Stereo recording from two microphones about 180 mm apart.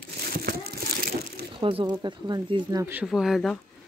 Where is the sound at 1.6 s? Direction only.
30° right (ahead or behind); by 3.1 s 15° right (ahead or behind).